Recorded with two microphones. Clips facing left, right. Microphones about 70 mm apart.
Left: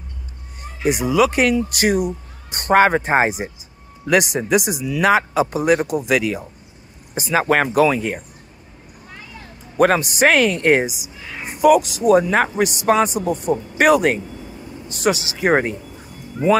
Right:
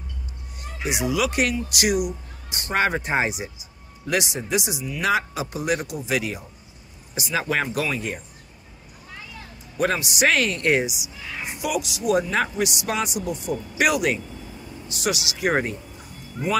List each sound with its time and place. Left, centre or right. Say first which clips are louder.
0.8 s speech: left 7 dB; left
2.8 s speech: left 5 dB; left
4.1 s speech: left 8 dB; left
9.8 s speech: left 7 dB; left